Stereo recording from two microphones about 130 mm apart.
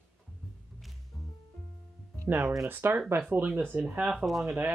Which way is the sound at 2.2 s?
15° right (ahead or behind).